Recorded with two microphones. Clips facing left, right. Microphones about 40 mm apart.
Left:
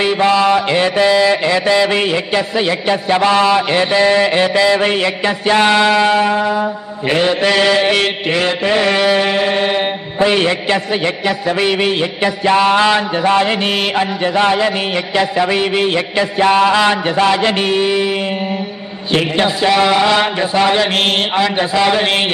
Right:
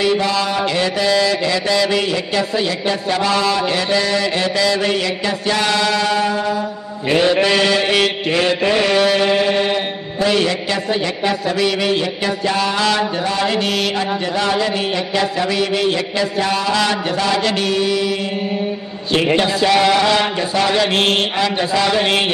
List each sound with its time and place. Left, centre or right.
0.0 s a man's voice: left
12.4 s mantra: left
13.4 s a man's voice: left
19.1 s a man's voice: left